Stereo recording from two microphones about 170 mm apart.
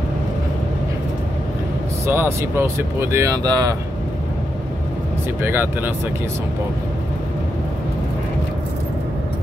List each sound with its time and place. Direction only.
2.0 s speech: 15° right (ahead or behind)
5.4 s speech: 10° right (ahead or behind)